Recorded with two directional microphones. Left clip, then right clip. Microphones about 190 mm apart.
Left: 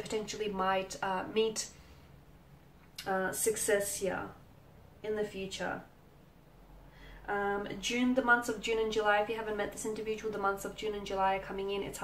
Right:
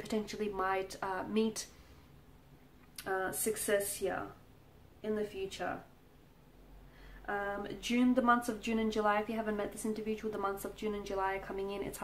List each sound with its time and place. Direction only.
0.1 s speech: 35° right (ahead or behind)
3.0 s speech: 35° right (ahead or behind)
7.2 s speech: 40° right (ahead or behind)